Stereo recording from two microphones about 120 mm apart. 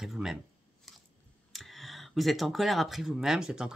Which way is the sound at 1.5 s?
Centre (ahead or behind).